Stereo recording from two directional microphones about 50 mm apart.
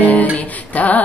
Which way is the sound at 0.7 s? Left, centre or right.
Left.